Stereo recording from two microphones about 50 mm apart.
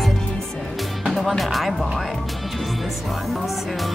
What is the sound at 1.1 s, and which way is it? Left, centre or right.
Speech, centre.